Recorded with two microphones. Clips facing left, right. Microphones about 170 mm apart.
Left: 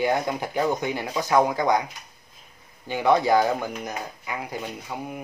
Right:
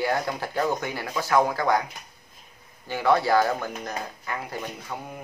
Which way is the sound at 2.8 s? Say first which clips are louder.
Left 2 dB; 15° left (ahead or behind).